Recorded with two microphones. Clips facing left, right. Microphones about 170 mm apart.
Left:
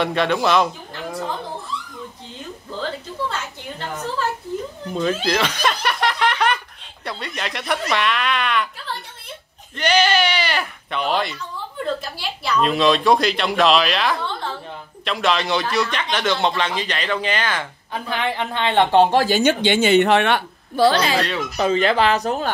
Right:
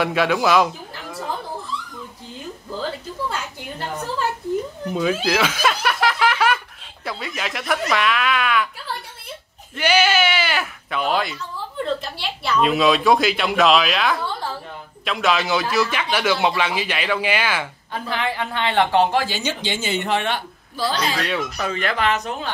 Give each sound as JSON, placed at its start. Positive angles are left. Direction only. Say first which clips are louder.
{"t": 0.0, "sound": "speech", "louder": "even", "side_deg": -5}
{"t": 2.8, "sound": "a sound", "louder": "left 1 dB", "side_deg": -10}
{"t": 4.9, "sound": "snicker", "louder": "even", "side_deg": -5}
{"t": 7.1, "sound": "speech", "louder": "even", "side_deg": -5}
{"t": 9.8, "sound": "bleat", "louder": "even", "side_deg": -5}
{"t": 11.8, "sound": "a man's voice", "louder": "right 1 dB", "side_deg": 0}
{"t": 17.9, "sound": "a woman's voice", "louder": "left 1 dB", "side_deg": 20}
{"t": 19.2, "sound": "a woman's voice", "louder": "left 8 dB", "side_deg": 50}
{"t": 21.5, "sound": "speech", "louder": "left 6 dB", "side_deg": 30}